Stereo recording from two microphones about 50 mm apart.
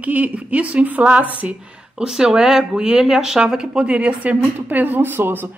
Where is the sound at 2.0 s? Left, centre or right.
Centre.